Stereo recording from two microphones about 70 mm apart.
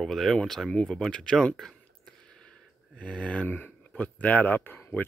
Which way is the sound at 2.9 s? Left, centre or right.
Centre.